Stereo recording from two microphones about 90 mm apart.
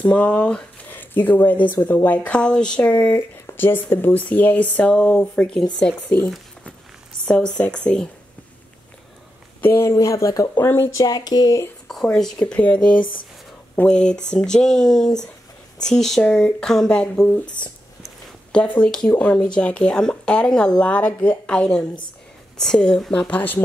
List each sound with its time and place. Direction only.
0.0 s speech: 15° left (ahead or behind)
3.2 s speech: 30° left (ahead or behind); by 8.1 s 10° left (ahead or behind)
9.6 s speech: 25° left (ahead or behind)
10.6 s speech: 25° left (ahead or behind)
11.0 s speech: 45° left (ahead or behind)
11.9 s speech: 5° left (ahead or behind)
18.8 s speech: 10° left (ahead or behind)